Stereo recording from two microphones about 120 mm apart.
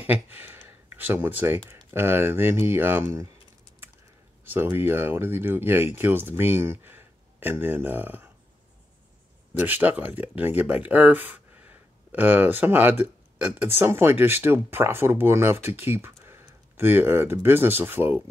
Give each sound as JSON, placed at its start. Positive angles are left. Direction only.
{"t": 0.0, "sound": "speech", "side_deg": -15}
{"t": 4.5, "sound": "speech", "side_deg": -15}
{"t": 9.5, "sound": "speech", "side_deg": -20}